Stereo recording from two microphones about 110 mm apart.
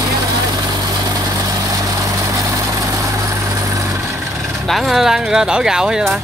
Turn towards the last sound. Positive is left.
turn(degrees=-5)  # may be behind; listen again after turning